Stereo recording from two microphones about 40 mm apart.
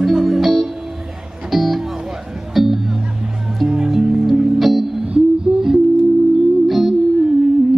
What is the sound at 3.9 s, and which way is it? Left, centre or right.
Music, right.